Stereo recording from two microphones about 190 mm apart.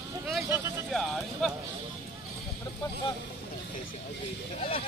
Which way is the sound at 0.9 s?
Centre (ahead or behind).